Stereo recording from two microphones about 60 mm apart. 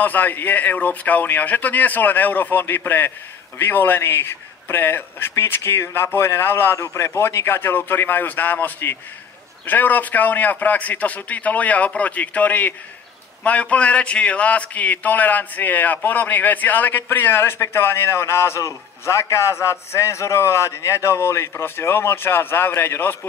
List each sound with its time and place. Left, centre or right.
0.0 s a man's voice: left